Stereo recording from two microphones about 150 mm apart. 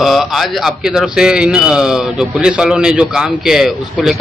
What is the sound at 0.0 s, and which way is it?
A man's voice, centre (ahead or behind).